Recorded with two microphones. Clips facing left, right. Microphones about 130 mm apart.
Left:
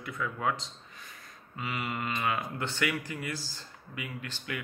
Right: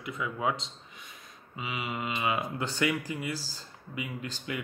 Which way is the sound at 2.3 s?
15° right (ahead or behind).